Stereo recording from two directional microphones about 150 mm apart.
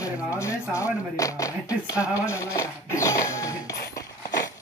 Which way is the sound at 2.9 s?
20° left (ahead or behind).